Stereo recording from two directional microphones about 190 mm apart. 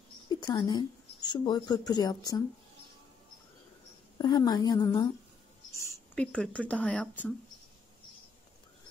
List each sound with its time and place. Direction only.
0.4 s speech: 20° left (ahead or behind)
4.2 s a woman's voice: 20° left (ahead or behind)